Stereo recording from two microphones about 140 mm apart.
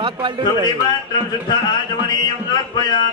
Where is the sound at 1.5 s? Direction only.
30° left (ahead or behind).